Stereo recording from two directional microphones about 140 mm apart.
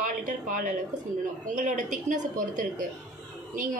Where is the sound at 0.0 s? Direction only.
70° right (ahead or behind).